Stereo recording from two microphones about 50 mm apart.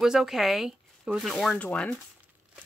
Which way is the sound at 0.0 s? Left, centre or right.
Centre.